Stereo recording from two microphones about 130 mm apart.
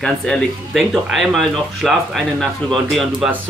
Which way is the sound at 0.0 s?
5° left (ahead or behind).